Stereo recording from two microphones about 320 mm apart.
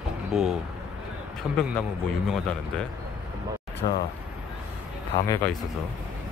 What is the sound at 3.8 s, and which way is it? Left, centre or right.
Speech, left.